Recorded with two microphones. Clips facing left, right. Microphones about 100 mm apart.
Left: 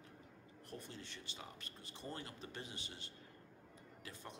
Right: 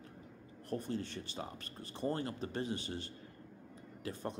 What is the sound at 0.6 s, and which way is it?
Speech, 45° right (ahead or behind).